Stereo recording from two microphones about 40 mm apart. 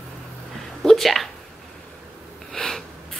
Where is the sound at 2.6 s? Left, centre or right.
Centre.